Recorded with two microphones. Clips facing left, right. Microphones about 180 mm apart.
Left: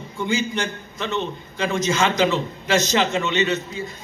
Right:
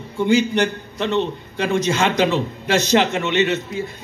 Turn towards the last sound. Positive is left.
turn(degrees=-60)  # may be behind; listen again after turning